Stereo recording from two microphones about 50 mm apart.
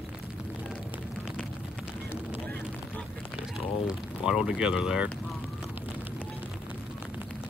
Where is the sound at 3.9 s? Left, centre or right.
Centre.